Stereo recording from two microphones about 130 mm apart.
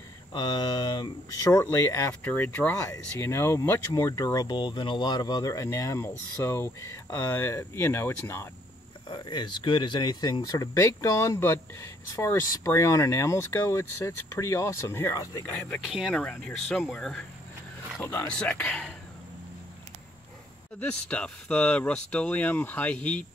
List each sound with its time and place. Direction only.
0.3 s speech: 35° left (ahead or behind)
1.5 s speech: 20° left (ahead or behind)
9.1 s speech: 35° left (ahead or behind)
15.5 s speech: 10° left (ahead or behind)
15.8 s speech: 5° right (ahead or behind)
16.2 s speech: 5° left (ahead or behind)
20.8 s speech: 10° left (ahead or behind)